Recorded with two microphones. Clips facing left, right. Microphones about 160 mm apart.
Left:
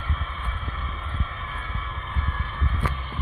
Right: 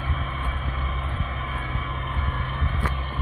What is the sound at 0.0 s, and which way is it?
Vehicle, 15° right (ahead or behind).